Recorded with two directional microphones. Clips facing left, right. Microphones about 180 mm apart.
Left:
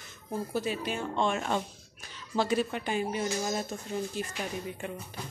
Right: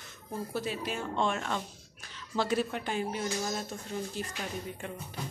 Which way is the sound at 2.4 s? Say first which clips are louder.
Left 2 dB; centre (ahead or behind).